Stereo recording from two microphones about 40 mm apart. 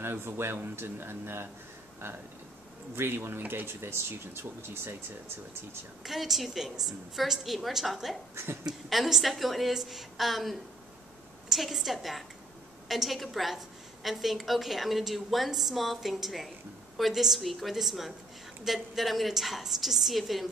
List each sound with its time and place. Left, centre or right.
0.0 s speech: right
3.0 s speech: right
6.0 s a woman's voice: centre